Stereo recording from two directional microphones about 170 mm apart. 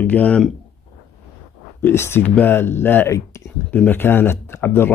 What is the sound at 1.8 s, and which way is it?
Speech, 15° left (ahead or behind).